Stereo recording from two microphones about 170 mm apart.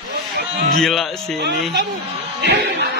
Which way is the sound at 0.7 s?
Centre (ahead or behind).